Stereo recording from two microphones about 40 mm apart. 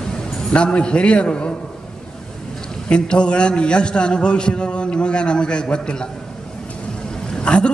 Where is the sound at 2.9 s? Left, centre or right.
Left.